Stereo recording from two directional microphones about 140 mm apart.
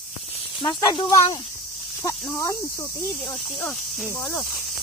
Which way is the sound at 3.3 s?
5° left (ahead or behind).